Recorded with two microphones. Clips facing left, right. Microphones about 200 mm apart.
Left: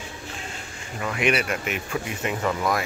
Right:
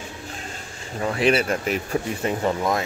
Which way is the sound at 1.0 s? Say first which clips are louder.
Right 4 dB; 30° right (ahead or behind).